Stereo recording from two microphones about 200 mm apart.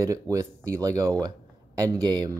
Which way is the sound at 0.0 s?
15° right (ahead or behind).